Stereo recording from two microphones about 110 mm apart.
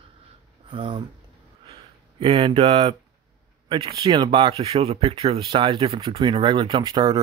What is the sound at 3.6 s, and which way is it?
Speech, 40° right (ahead or behind).